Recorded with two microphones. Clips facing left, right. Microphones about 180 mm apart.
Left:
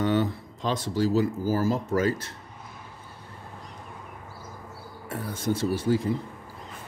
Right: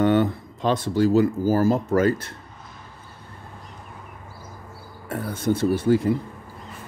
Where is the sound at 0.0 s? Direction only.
55° right (ahead or behind).